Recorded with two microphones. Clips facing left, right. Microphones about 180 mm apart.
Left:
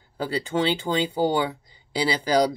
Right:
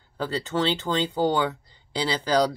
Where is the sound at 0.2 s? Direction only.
15° left (ahead or behind).